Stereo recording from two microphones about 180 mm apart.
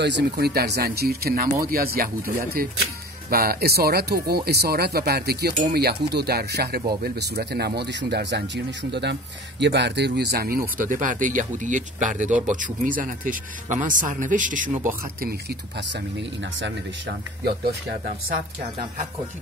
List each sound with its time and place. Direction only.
0.0 s speech: 70° right (ahead or behind)
10.8 s speech: 45° right (ahead or behind)
17.5 s speech: 60° right (ahead or behind)